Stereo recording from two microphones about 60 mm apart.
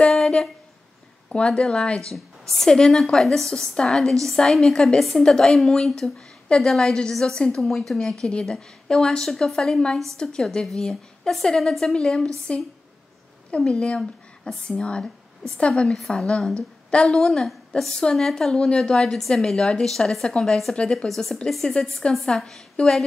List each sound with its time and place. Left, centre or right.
0.0 s a sound: centre
1.3 s a woman's voice: centre
2.1 s a woman's voice: centre
21.1 s a woman's voice: centre